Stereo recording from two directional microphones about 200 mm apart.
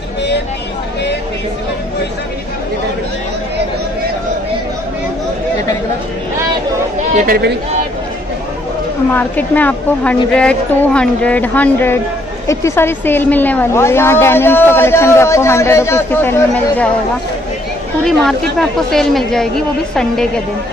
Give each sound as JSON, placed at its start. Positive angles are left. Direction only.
{"t": 7.2, "sound": "speech", "side_deg": -50}
{"t": 9.1, "sound": "a woman's voice", "side_deg": 10}
{"t": 18.0, "sound": "a woman's voice", "side_deg": 0}